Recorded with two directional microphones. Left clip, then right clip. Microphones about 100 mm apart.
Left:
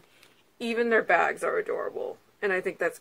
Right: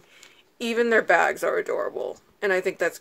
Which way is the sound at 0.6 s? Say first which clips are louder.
Right 3 dB; 35° right (ahead or behind).